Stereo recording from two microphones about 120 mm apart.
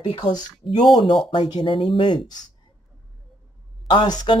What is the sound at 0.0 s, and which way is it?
Speech, 50° left (ahead or behind).